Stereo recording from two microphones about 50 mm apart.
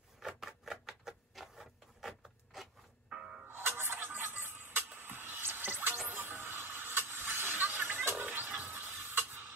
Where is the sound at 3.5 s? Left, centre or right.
Right.